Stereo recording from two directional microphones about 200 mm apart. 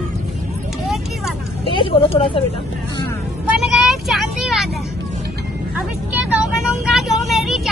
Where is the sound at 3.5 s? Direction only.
5° right (ahead or behind).